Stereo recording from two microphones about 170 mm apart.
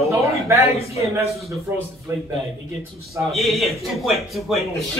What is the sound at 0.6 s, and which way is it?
Speech, 35° left (ahead or behind).